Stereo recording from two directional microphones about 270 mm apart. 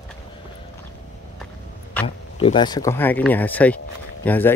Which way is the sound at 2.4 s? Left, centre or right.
Centre.